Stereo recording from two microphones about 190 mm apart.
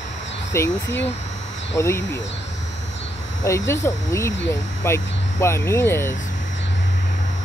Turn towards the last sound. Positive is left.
turn(degrees=15)  # may be behind; listen again after turning